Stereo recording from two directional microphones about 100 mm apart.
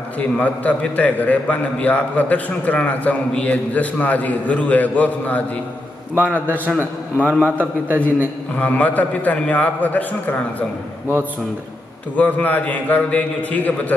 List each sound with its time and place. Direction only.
0.2 s a man's voice: 15° left (ahead or behind)
6.1 s a man's voice: 20° right (ahead or behind)
8.5 s a man's voice: 15° left (ahead or behind)
12.2 s a man's voice: 15° left (ahead or behind)